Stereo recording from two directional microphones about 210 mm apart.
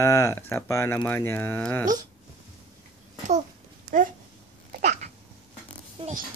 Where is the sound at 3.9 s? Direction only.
40° right (ahead or behind).